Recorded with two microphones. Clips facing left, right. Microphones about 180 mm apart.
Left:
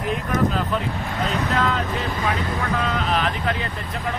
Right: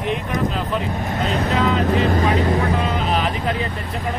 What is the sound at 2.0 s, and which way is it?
Speech, 50° right (ahead or behind).